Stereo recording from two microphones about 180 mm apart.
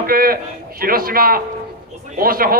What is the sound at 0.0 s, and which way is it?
A man's voice, 55° right (ahead or behind).